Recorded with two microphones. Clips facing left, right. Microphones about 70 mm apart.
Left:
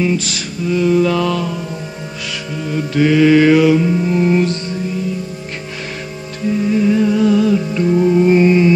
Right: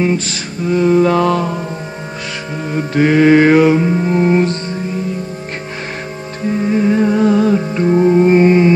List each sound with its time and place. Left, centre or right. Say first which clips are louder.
0.0 s mantra: right 1 dB; right
2.7 s mantra: right 1 dB; right
6.4 s music: even; right